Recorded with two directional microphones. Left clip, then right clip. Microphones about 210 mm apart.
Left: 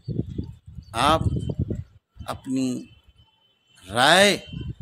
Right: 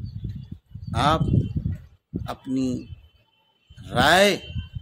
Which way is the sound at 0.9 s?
5° left (ahead or behind).